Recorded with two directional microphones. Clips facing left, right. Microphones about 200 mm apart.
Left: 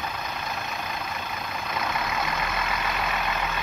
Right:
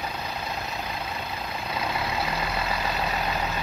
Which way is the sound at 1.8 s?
30° right (ahead or behind).